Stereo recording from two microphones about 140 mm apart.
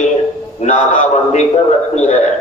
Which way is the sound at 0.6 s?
60° left (ahead or behind).